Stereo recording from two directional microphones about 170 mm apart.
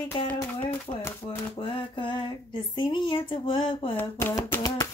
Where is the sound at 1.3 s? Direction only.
30° left (ahead or behind).